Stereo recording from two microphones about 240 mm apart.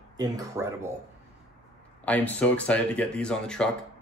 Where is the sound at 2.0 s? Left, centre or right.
Centre.